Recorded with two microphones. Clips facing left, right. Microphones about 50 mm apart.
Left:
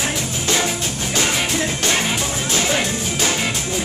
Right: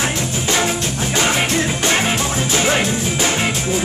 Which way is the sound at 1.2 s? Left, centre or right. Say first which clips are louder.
Right 3 dB; right.